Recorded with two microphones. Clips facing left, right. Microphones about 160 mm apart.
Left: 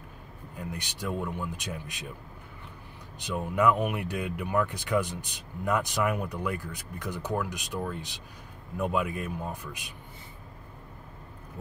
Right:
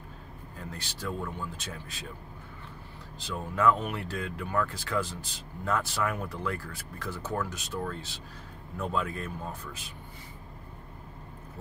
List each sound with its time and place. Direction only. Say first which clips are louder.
0.6 s speech: left 4 dB; 15° left (ahead or behind)
3.2 s speech: left 3 dB; 15° left (ahead or behind)